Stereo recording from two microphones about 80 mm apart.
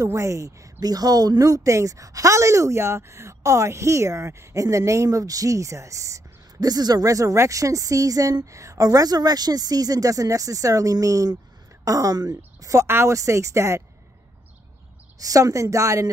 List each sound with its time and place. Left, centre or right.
0.0 s speech: right
0.7 s a woman's voice: right
12.8 s speech: right
13.1 s speech: right
15.1 s a woman's voice: right